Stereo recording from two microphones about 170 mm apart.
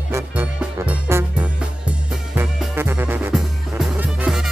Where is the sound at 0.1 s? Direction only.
15° right (ahead or behind).